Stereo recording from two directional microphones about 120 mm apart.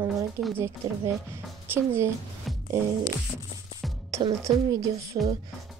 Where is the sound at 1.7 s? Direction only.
20° right (ahead or behind).